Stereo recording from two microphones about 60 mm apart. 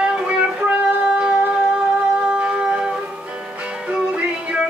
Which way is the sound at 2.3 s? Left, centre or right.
Centre.